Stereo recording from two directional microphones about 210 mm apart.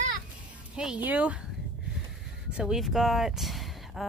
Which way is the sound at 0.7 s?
5° right (ahead or behind).